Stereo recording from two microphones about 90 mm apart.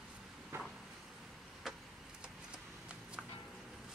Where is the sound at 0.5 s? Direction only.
30° right (ahead or behind).